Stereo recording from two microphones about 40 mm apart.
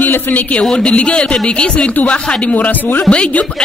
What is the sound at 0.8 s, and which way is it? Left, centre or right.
Speech, left.